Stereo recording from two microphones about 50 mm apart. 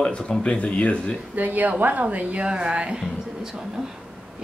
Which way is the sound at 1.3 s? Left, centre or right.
Right.